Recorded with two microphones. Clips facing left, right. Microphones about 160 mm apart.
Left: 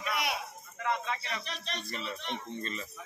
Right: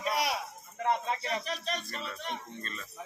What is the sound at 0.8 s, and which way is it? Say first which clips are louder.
A man's voice: right 3 dB; 40° right (ahead or behind).